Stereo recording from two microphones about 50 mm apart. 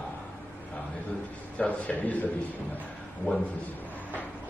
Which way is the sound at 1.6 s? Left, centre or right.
Left.